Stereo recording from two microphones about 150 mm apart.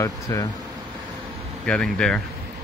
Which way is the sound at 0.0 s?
25° left (ahead or behind).